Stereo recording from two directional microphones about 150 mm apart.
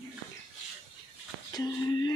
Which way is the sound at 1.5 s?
25° left (ahead or behind).